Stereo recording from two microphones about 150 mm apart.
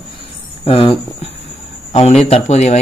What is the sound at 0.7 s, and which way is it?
Speech, 35° left (ahead or behind).